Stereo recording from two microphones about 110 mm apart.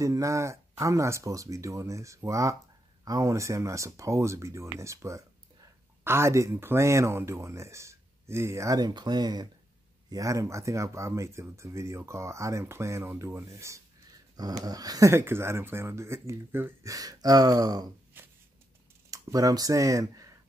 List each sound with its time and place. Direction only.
0.0 s speech: 30° right (ahead or behind)
16.9 s speech: 35° right (ahead or behind)
18.1 s a sound: 20° right (ahead or behind)
19.0 s speech: 35° right (ahead or behind)